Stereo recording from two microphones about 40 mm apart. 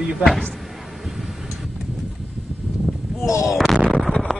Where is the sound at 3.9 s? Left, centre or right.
Centre.